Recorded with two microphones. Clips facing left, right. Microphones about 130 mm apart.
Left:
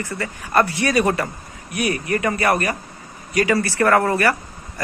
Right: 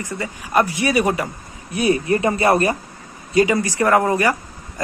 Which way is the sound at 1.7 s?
25° right (ahead or behind).